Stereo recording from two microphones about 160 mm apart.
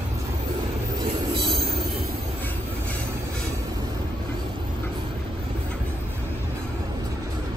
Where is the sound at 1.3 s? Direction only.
35° right (ahead or behind).